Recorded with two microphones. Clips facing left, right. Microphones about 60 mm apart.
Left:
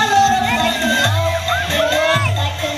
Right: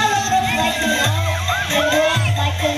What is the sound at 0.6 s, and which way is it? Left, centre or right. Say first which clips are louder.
Music: left 2 dB; centre.